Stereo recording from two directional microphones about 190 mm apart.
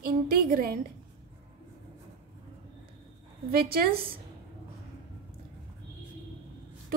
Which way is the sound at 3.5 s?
50° right (ahead or behind).